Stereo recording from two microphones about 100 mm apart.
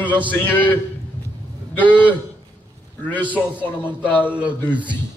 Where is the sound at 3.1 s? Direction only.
15° left (ahead or behind).